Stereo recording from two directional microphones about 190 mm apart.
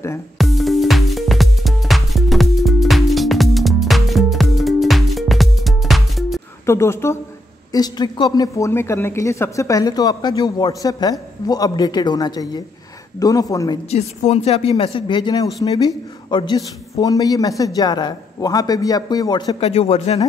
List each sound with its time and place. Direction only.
0.4 s music: centre (ahead or behind)
6.6 s a woman's voice: 15° left (ahead or behind)
13.8 s speech: 35° left (ahead or behind)